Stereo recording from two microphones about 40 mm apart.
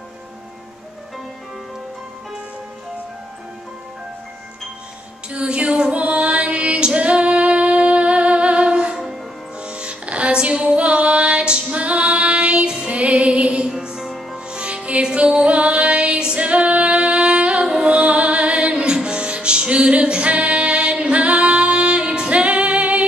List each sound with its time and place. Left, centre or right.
5.3 s music: right
13.7 s music: centre
14.5 s music: right